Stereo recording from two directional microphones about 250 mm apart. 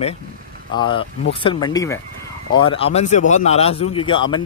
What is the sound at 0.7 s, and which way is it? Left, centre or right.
Speech, centre.